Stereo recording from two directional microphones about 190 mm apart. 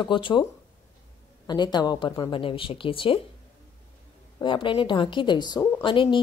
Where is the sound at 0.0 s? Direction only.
25° left (ahead or behind).